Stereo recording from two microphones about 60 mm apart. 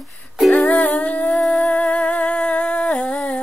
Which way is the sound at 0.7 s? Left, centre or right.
Left.